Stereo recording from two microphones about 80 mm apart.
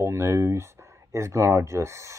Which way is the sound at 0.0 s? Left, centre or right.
Right.